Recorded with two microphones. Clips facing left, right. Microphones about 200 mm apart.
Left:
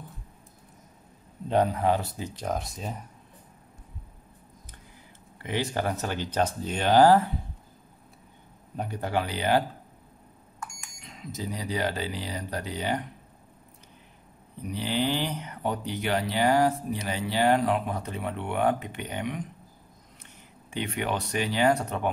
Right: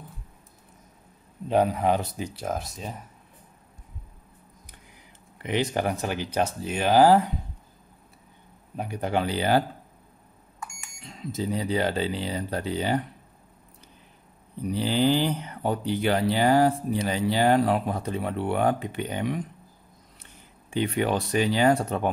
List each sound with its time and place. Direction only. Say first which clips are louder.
1.5 s speech: right 2 dB; 10° right (ahead or behind)
5.4 s speech: right 3 dB; 20° right (ahead or behind)
8.7 s speech: right 2 dB; 10° right (ahead or behind)
9.1 s speech: right 2 dB; 30° right (ahead or behind)
11.0 s speech: right 6 dB; 30° right (ahead or behind)
14.7 s speech: right 5 dB; 35° right (ahead or behind)
20.7 s speech: right 5 dB; 35° right (ahead or behind)